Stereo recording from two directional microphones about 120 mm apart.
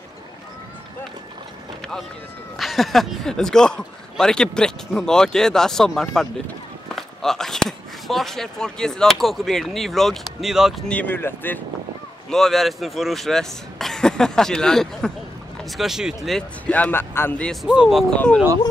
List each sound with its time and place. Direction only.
2.5 s speech: centre (ahead or behind)
10.9 s speech: 15° left (ahead or behind)
12.3 s speech: centre (ahead or behind)
17.6 s speech: 5° right (ahead or behind)
18.1 s speech: 10° left (ahead or behind)